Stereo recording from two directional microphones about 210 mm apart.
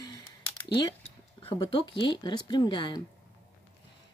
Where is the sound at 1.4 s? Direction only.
20° left (ahead or behind).